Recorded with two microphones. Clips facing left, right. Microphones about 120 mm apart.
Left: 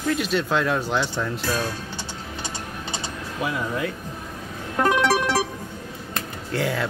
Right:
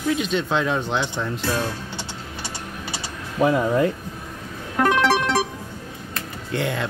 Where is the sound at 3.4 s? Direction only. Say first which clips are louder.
Right 8 dB; 35° right (ahead or behind).